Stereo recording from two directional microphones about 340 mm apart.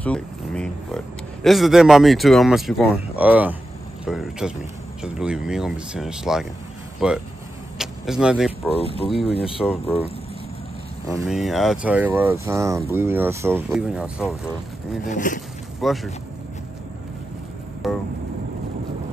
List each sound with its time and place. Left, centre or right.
0.0 s speech: centre
9.0 s speech: centre
11.1 s speech: centre
15.0 s speech: left
15.8 s speech: centre
17.8 s speech: centre